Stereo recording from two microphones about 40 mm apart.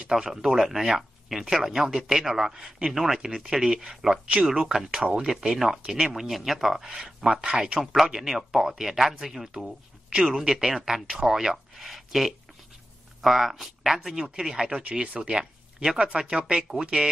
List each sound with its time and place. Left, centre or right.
0.1 s speech: centre
7.8 s speech: centre